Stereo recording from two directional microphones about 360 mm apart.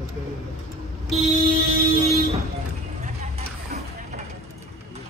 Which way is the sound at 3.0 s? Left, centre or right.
Right.